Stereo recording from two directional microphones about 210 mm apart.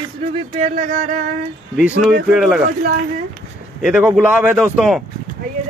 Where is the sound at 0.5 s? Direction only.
35° right (ahead or behind).